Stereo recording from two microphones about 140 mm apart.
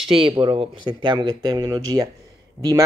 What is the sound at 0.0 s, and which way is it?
Speech, 40° right (ahead or behind).